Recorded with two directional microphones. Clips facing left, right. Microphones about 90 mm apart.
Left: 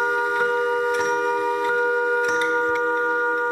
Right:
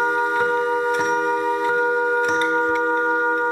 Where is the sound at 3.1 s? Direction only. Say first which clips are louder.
Right 2 dB; 10° right (ahead or behind).